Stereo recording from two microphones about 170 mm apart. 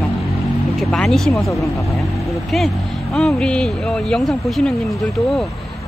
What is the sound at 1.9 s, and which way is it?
Speech, centre (ahead or behind).